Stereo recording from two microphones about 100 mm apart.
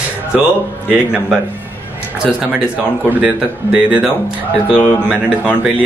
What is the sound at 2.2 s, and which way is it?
Speech, 10° right (ahead or behind).